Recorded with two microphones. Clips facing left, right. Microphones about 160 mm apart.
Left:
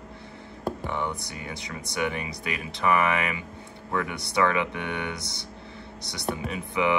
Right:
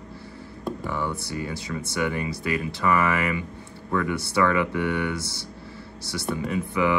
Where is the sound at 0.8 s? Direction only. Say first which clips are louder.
Right 2 dB; 20° left (ahead or behind).